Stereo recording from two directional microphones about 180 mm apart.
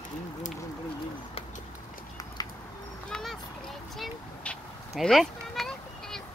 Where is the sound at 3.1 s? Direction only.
5° left (ahead or behind).